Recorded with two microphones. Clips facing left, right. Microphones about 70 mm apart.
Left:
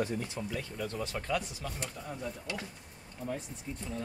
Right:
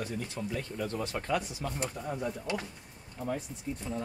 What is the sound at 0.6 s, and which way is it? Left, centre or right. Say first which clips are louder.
Speech: right 4 dB; centre.